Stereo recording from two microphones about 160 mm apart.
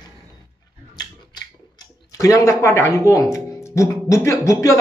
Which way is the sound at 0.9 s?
25° left (ahead or behind).